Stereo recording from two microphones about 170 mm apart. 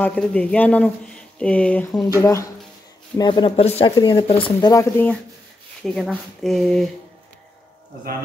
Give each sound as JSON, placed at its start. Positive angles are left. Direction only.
{"t": 0.0, "sound": "speech", "side_deg": 5}
{"t": 5.8, "sound": "speech", "side_deg": 0}